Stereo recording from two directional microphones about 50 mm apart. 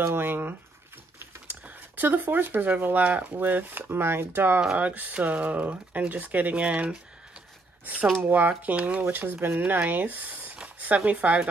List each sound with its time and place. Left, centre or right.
0.0 s speech: right
1.5 s a sound: right
2.7 s speech: right
4.7 s speech: right
9.0 s speech: right
10.6 s a sound: right
11.1 s speech: right